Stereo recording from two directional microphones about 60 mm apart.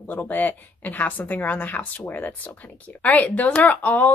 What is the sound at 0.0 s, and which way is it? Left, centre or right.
Speech, left.